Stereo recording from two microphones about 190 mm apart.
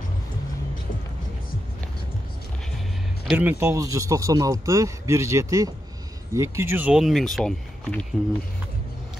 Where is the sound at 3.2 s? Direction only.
10° right (ahead or behind).